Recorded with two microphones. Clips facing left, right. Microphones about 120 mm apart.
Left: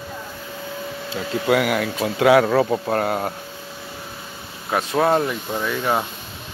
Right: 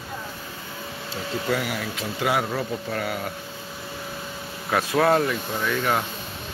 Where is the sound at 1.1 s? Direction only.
70° left (ahead or behind); by 3.3 s 40° left (ahead or behind).